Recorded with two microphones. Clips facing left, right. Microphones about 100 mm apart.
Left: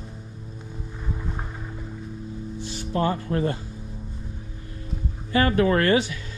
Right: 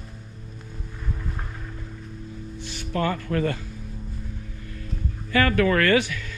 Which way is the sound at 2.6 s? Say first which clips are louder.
Left 1 dB; 20° left (ahead or behind).